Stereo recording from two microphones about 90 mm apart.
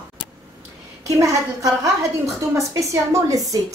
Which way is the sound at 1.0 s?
40° right (ahead or behind).